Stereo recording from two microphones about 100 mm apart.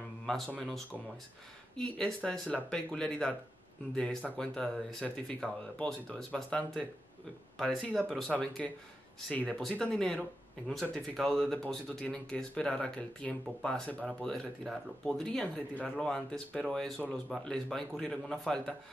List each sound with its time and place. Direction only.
0.6 s speech: 5° left (ahead or behind)